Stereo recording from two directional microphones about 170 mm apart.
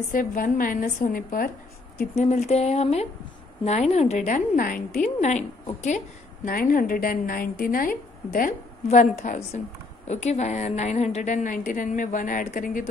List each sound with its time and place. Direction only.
0.1 s a woman's voice: 55° left (ahead or behind)
2.1 s speech: 40° left (ahead or behind)
4.6 s a woman's voice: 55° left (ahead or behind)
8.8 s a woman's voice: 45° left (ahead or behind)